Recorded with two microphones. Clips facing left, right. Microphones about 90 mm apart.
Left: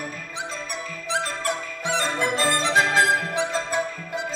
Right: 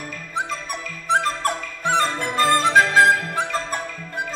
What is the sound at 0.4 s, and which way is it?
Music, 50° right (ahead or behind).